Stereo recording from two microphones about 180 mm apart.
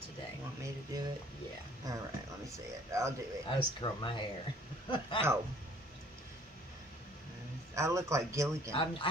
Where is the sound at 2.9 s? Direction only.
20° right (ahead or behind).